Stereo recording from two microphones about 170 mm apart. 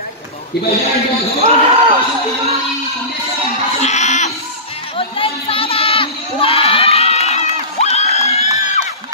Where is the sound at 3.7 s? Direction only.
40° left (ahead or behind).